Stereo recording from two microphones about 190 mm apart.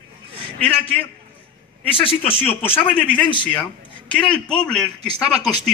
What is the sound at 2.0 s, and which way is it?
Speech, 30° left (ahead or behind).